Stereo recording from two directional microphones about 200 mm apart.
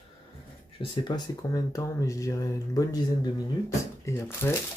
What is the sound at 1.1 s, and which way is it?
Speech, 20° left (ahead or behind).